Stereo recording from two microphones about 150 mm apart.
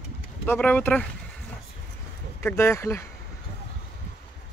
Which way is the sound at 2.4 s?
15° left (ahead or behind).